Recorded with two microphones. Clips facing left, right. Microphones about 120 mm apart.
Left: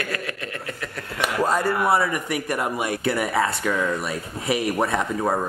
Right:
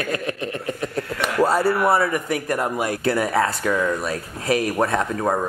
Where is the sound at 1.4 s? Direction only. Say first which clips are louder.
Right 4 dB; 10° right (ahead or behind).